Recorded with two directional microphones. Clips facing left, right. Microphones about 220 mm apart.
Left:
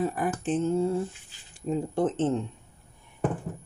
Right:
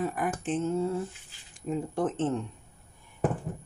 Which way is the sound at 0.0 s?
35° left (ahead or behind).